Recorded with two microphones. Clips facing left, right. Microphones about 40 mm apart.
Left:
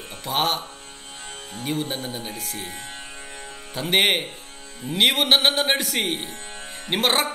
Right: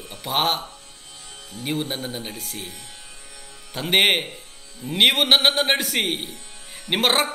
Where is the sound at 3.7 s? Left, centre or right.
Centre.